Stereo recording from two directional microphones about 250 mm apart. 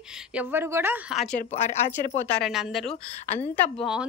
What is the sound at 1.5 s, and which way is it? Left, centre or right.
Speech, left.